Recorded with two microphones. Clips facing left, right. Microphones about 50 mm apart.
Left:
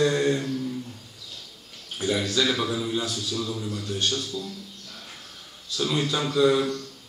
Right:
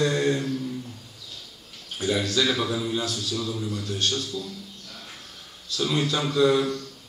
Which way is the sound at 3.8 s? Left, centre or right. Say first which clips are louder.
Left 1 dB; centre.